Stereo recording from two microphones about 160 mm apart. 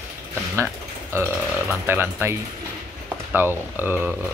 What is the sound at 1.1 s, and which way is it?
Speech, 15° right (ahead or behind).